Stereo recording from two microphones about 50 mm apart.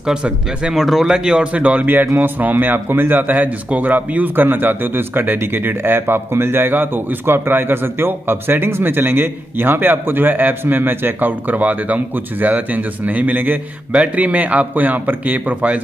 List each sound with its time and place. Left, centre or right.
0.0 s speech: centre
0.7 s speech: centre
1.1 s speech: centre
1.9 s a man's voice: right